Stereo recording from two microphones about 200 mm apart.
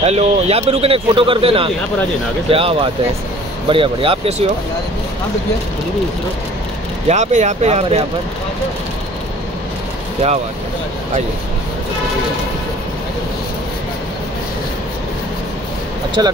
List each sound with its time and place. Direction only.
0.0 s speech: 30° right (ahead or behind)
7.1 s speech: 35° right (ahead or behind)
16.2 s speech: 20° right (ahead or behind)